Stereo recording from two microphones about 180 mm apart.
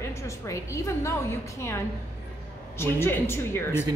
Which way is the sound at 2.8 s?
15° left (ahead or behind).